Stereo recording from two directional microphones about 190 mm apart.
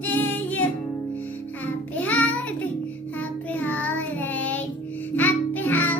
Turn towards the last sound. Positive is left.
turn(degrees=10)  # may be behind; listen again after turning